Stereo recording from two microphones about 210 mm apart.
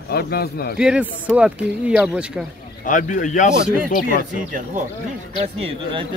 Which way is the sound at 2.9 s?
40° left (ahead or behind).